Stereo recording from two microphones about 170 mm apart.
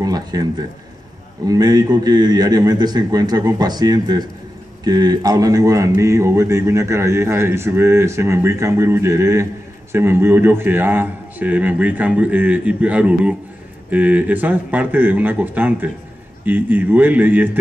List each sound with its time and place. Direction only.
0.0 s a man's voice: 20° right (ahead or behind)